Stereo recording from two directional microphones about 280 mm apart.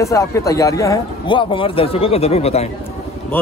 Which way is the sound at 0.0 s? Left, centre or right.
Centre.